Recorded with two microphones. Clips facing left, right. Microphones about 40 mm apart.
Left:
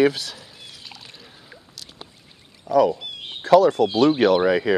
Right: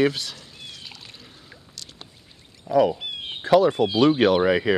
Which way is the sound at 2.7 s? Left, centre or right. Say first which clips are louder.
Left 2 dB; centre.